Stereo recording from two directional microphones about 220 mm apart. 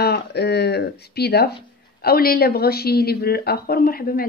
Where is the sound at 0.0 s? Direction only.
50° left (ahead or behind).